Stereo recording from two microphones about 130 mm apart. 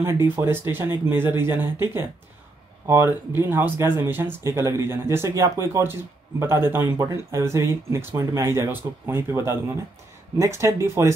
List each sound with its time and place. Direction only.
0.0 s speech: 20° right (ahead or behind)